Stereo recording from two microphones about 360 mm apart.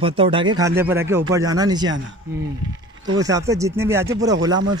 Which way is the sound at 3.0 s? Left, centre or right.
Centre.